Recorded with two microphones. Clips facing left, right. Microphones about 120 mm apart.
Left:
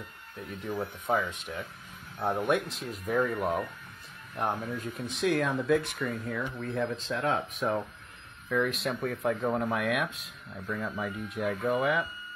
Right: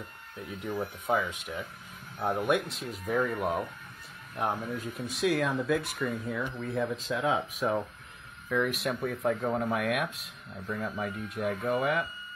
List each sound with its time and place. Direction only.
0.4 s speech: 5° right (ahead or behind)